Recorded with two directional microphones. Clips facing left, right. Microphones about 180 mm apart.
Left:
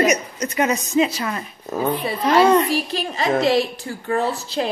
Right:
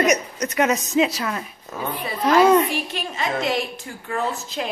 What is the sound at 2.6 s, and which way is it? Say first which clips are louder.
A woman's voice: left 4 dB; 35° left (ahead or behind).